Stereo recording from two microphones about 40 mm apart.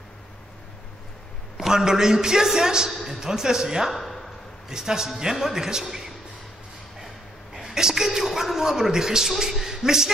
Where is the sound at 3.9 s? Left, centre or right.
Centre.